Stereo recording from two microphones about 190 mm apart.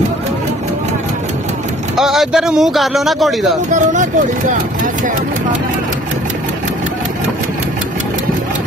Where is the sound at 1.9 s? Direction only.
Centre (ahead or behind).